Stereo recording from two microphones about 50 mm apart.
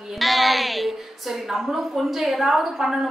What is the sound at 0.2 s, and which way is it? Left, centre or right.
A woman's voice, centre.